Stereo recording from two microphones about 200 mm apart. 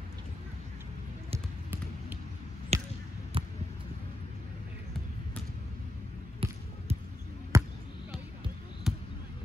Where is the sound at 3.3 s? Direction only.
25° right (ahead or behind).